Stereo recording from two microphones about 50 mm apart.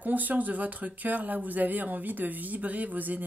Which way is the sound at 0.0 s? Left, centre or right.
Right.